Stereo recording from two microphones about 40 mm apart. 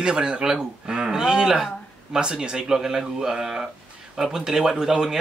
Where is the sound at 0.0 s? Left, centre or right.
Right.